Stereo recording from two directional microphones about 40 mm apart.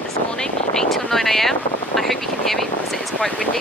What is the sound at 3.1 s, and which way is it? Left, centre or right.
Speech, centre.